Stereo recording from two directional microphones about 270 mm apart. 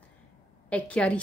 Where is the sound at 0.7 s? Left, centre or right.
Centre.